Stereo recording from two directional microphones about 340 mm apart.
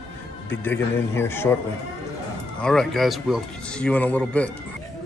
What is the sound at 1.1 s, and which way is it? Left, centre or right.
Speech, centre.